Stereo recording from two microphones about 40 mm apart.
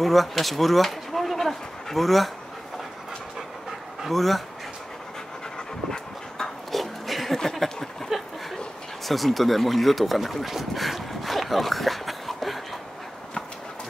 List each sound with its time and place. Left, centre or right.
0.0 s speech: centre
4.1 s speech: centre
5.9 s dog: centre
6.7 s a sound: centre
8.1 s a sound: centre
9.0 s speech: centre